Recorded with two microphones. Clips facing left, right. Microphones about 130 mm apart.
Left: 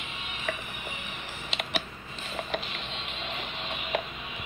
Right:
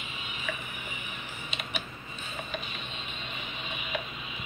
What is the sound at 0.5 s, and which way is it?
Music, 65° left (ahead or behind).